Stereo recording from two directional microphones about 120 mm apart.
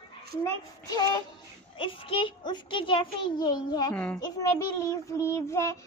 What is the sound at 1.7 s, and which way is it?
A child's voice, 45° left (ahead or behind).